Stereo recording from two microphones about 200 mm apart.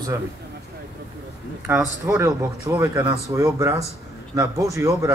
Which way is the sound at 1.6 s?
15° right (ahead or behind).